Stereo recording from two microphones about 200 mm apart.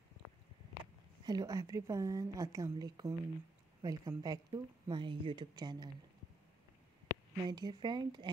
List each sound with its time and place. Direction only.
1.2 s a woman's voice: 20° right (ahead or behind)
7.3 s speech: 20° right (ahead or behind)